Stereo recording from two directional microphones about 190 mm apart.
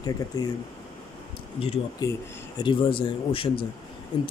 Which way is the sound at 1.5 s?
30° left (ahead or behind).